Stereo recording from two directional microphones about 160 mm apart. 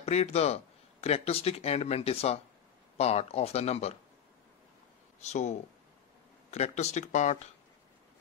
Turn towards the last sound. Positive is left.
turn(degrees=50)  # may be behind; listen again after turning